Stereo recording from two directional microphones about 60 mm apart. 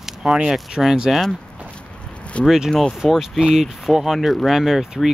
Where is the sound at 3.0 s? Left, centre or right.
Centre.